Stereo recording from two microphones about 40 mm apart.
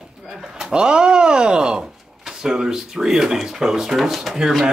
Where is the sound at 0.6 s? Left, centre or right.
Right.